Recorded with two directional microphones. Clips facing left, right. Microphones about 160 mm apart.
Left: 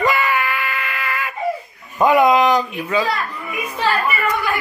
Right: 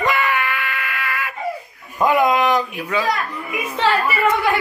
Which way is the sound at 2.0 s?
Centre (ahead or behind).